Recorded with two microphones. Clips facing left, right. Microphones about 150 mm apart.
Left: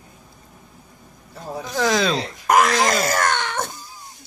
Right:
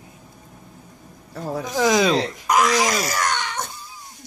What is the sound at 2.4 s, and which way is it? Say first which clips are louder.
Wail: left 4 dB; 50° left (ahead or behind).